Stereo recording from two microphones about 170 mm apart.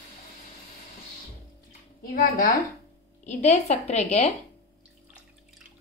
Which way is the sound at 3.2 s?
45° left (ahead or behind).